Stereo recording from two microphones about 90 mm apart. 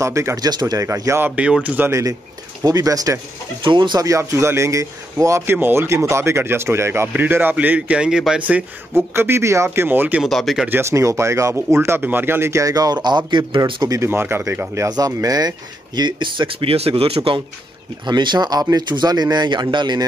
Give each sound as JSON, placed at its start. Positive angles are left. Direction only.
{"t": 0.0, "sound": "speech", "side_deg": -35}
{"t": 0.5, "sound": "speech", "side_deg": -50}
{"t": 1.3, "sound": "speech", "side_deg": -15}
{"t": 1.9, "sound": "speech", "side_deg": -35}
{"t": 3.6, "sound": "speech", "side_deg": -60}
{"t": 4.0, "sound": "speech", "side_deg": -35}
{"t": 8.9, "sound": "speech", "side_deg": -25}
{"t": 10.2, "sound": "speech", "side_deg": 0}
{"t": 10.7, "sound": "speech", "side_deg": -30}
{"t": 13.8, "sound": "speech", "side_deg": -30}
{"t": 14.9, "sound": "speech", "side_deg": -45}
{"t": 18.0, "sound": "speech", "side_deg": -55}